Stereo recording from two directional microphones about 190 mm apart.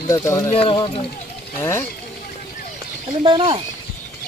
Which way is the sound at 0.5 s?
30° left (ahead or behind).